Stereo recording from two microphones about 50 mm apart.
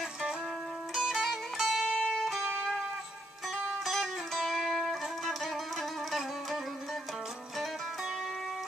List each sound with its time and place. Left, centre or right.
0.9 s music: centre